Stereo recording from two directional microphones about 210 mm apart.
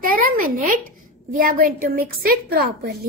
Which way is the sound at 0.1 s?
40° right (ahead or behind).